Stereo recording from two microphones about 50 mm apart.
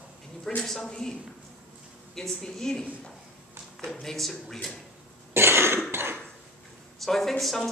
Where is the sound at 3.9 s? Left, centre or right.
Centre.